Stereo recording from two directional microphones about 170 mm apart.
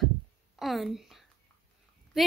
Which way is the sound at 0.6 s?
Centre (ahead or behind).